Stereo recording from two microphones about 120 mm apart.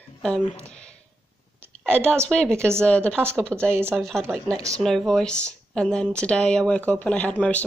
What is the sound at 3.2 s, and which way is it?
Speech, 20° right (ahead or behind).